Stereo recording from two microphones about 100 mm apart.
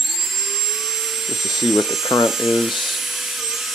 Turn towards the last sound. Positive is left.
turn(degrees=-5)  # may be behind; listen again after turning